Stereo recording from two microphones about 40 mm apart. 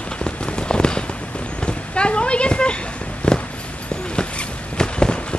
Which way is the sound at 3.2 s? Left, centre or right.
Left.